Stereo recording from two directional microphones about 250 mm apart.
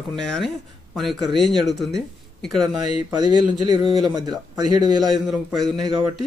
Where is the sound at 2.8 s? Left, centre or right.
Centre.